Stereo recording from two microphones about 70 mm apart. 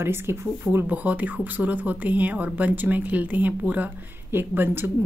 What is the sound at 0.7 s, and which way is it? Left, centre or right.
Speech, right.